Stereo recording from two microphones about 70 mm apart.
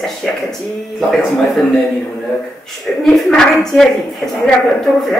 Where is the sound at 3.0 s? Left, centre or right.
Centre.